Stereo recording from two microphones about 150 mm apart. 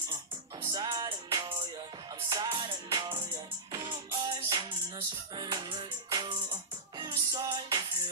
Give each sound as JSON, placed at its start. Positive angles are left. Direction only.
{"t": 0.7, "sound": "music", "side_deg": -30}